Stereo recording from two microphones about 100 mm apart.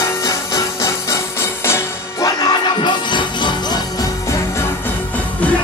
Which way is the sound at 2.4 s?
50° left (ahead or behind).